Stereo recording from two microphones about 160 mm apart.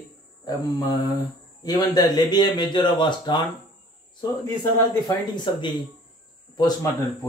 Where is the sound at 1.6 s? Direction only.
25° left (ahead or behind).